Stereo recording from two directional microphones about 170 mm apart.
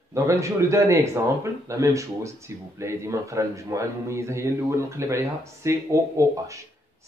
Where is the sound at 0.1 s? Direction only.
15° right (ahead or behind).